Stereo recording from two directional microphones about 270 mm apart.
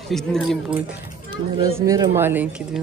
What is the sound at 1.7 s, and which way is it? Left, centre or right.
Speech, centre.